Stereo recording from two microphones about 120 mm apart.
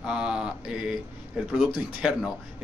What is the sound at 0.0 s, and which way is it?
Mantra, 5° right (ahead or behind).